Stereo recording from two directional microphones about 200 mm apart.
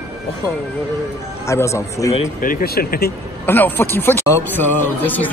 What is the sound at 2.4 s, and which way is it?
Speech, 45° left (ahead or behind).